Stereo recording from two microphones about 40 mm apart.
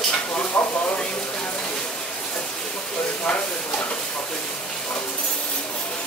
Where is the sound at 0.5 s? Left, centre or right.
Left.